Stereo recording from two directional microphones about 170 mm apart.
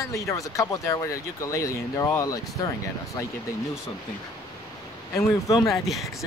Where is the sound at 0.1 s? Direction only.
20° left (ahead or behind).